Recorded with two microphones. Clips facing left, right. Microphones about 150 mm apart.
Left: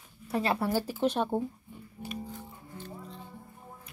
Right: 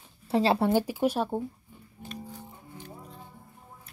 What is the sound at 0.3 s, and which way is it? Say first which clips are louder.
Speech: right 5 dB; 25° right (ahead or behind).